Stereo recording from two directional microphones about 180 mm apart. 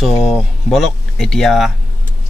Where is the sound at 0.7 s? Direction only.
Centre (ahead or behind).